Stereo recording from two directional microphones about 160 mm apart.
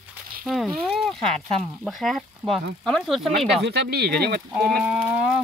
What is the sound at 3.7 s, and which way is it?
Speech, 90° right.